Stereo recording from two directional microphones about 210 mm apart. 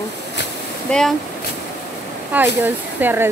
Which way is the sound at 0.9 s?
Centre (ahead or behind).